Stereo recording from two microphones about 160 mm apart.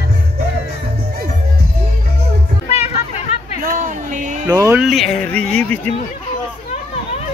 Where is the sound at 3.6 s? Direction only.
55° right (ahead or behind).